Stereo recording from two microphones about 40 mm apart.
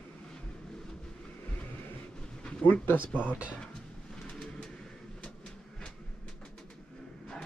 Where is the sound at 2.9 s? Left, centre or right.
Left.